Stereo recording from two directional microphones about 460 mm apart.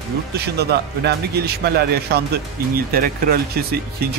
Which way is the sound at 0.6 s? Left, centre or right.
Right.